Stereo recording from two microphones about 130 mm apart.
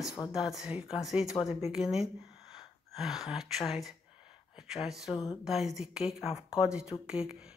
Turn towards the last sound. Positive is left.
turn(degrees=-5)  # may be behind; listen again after turning